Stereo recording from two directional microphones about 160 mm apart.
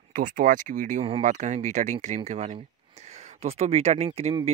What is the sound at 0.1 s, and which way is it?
Speech, 55° right (ahead or behind).